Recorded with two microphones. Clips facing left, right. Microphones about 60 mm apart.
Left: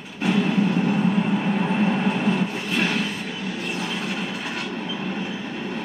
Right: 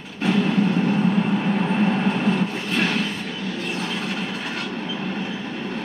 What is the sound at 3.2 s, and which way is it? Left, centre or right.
Train, left.